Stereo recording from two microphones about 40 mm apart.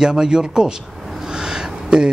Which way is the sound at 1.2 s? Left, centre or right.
Centre.